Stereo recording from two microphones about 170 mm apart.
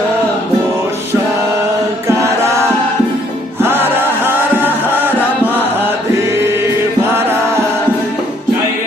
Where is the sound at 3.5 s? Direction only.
10° right (ahead or behind).